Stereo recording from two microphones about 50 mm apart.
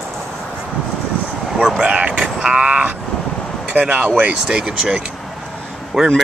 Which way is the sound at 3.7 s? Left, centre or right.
Right.